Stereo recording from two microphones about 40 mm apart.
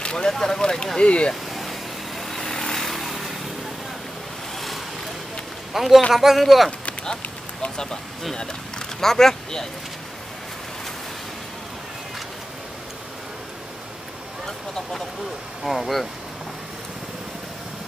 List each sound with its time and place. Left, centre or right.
0.0 s a sound: centre
0.3 s speech: centre
1.5 s vehicle: centre
2.9 s motorcycle: centre
5.7 s a man's voice: centre
7.7 s speech: centre
15.6 s speech: centre